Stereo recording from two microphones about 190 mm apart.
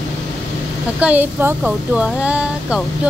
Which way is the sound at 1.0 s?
10° right (ahead or behind).